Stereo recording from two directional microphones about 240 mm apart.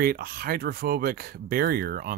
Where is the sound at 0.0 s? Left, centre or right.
Right.